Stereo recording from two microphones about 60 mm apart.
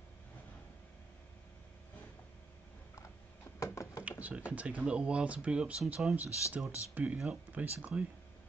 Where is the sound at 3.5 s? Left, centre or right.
Left.